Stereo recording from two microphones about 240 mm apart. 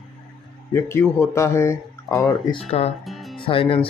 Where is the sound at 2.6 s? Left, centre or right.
Left.